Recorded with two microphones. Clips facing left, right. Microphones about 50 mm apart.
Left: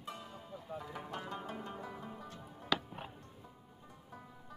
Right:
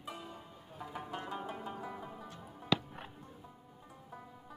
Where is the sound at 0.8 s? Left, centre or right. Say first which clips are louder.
Right 6 dB; centre.